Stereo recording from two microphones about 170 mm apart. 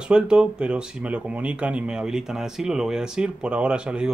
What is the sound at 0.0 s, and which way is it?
Speech, 5° right (ahead or behind).